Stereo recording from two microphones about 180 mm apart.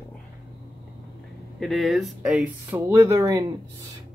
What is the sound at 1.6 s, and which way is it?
Speech, centre (ahead or behind).